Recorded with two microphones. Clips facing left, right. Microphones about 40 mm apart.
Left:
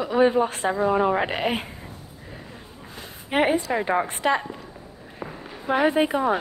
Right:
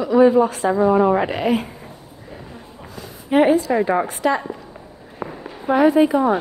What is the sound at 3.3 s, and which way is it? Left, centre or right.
A woman's voice, left.